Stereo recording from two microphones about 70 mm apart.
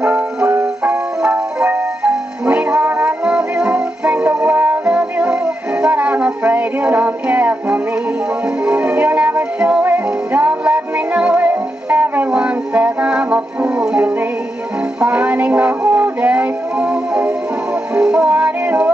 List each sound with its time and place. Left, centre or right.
0.0 s music: right
0.5 s music: right
1.7 s music: right
3.1 s music: centre